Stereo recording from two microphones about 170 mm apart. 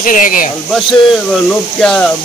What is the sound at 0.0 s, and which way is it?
Speech, 50° left (ahead or behind).